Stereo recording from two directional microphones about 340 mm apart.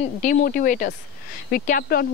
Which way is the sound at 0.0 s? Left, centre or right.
Left.